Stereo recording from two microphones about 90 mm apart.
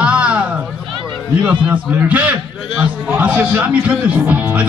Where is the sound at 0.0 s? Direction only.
15° right (ahead or behind).